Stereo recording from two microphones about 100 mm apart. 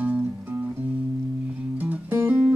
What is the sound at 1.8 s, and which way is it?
Music, 15° right (ahead or behind).